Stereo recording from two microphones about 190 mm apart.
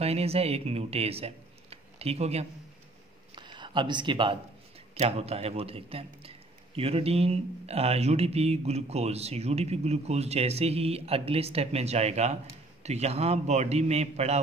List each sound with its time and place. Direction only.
0.0 s a man's voice: 30° right (ahead or behind)